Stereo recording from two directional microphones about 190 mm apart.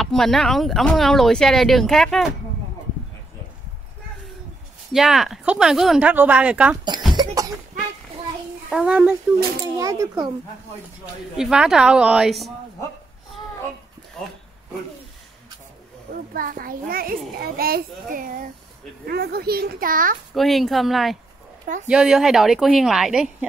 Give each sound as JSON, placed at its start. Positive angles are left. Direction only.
{"t": 0.0, "sound": "speech", "side_deg": 0}
{"t": 4.9, "sound": "speech", "side_deg": 0}
{"t": 7.2, "sound": "cough", "side_deg": -20}
{"t": 8.6, "sound": "a child's voice", "side_deg": -5}
{"t": 9.8, "sound": "a child's voice", "side_deg": -20}
{"t": 11.3, "sound": "speech", "side_deg": -5}
{"t": 16.3, "sound": "a child's voice", "side_deg": -45}
{"t": 20.3, "sound": "speech", "side_deg": 0}